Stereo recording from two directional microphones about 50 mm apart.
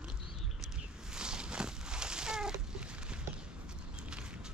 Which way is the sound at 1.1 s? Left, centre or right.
Centre.